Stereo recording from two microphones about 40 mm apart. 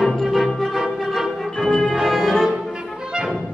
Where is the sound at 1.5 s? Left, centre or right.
Centre.